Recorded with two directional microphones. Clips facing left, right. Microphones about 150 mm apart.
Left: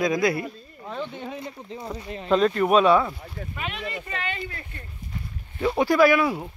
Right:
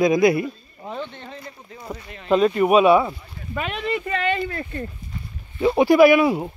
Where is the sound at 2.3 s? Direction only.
5° right (ahead or behind).